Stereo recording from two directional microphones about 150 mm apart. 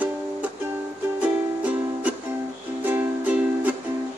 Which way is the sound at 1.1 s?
10° right (ahead or behind).